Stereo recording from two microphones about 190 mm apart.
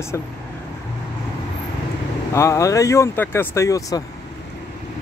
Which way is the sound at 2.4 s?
15° left (ahead or behind).